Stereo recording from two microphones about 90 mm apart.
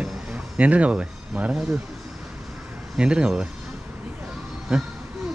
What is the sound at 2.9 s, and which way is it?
Speech, 10° right (ahead or behind).